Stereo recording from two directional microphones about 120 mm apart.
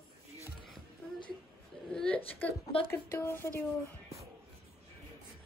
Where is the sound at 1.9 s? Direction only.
10° left (ahead or behind).